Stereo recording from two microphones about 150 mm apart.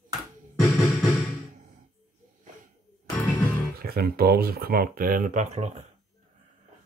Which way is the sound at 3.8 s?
90° right.